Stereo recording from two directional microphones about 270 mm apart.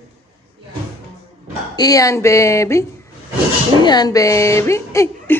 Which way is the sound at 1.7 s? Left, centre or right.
Centre.